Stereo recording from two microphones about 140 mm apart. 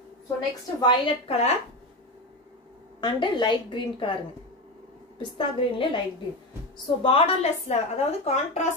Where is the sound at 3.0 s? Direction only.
35° left (ahead or behind).